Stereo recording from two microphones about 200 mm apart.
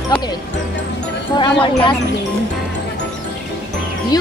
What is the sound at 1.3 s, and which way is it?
Speech, 25° left (ahead or behind).